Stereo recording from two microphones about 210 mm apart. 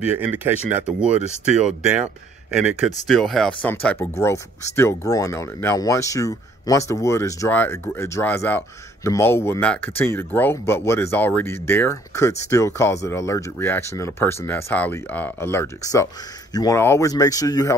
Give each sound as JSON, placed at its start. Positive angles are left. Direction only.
{"t": 0.0, "sound": "speech", "side_deg": -5}
{"t": 2.5, "sound": "speech", "side_deg": -5}